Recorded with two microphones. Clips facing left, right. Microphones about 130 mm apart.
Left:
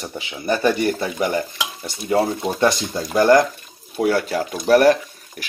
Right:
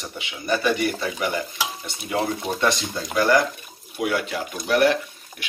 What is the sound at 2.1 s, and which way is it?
Speech, 35° left (ahead or behind).